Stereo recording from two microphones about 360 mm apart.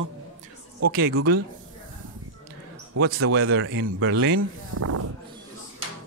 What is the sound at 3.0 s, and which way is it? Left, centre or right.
Speech, right.